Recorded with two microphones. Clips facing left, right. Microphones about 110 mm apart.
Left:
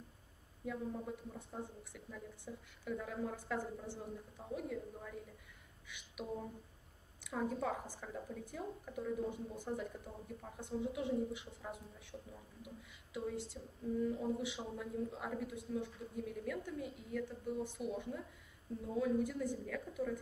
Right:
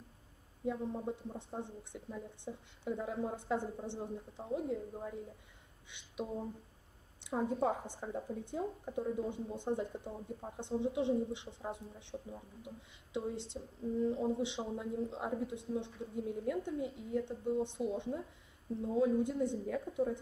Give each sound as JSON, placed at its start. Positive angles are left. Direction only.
{"t": 0.7, "sound": "a woman's voice", "side_deg": -25}
{"t": 5.9, "sound": "a sound", "side_deg": -25}
{"t": 7.2, "sound": "a woman's voice", "side_deg": -25}